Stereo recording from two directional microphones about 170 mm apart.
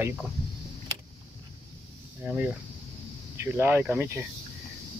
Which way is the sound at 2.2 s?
10° right (ahead or behind).